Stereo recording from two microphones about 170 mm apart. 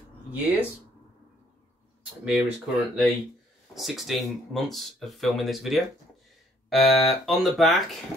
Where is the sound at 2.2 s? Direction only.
Centre (ahead or behind).